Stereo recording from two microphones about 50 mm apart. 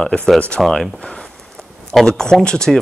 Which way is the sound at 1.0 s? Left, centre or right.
Left.